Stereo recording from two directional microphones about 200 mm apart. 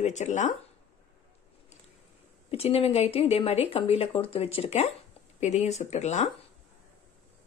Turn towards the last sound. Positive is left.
turn(degrees=35)  # may be behind; listen again after turning